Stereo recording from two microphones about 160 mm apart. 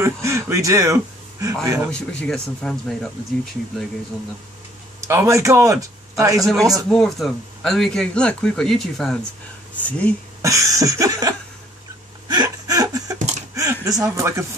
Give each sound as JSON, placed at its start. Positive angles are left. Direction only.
{"t": 0.0, "sound": "a man's voice", "side_deg": -20}
{"t": 1.9, "sound": "a man's voice", "side_deg": 5}
{"t": 5.0, "sound": "speech", "side_deg": -20}
{"t": 6.4, "sound": "a man's voice", "side_deg": 0}
{"t": 10.4, "sound": "a man's voice", "side_deg": -20}